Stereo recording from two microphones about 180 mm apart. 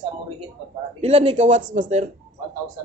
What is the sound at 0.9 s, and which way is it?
A man's voice, 35° right (ahead or behind).